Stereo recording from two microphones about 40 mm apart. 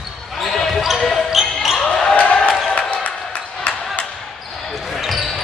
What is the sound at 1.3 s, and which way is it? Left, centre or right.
Basketball bounce, centre.